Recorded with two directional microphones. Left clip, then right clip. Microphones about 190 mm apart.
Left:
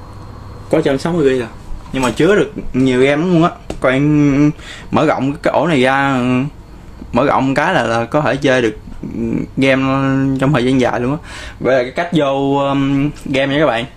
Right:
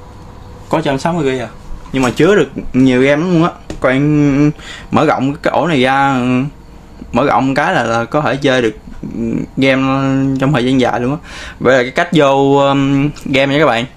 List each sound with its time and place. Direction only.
0.7 s a man's voice: 30° right (ahead or behind); by 11.5 s 5° right (ahead or behind)
11.6 s speech: 25° right (ahead or behind)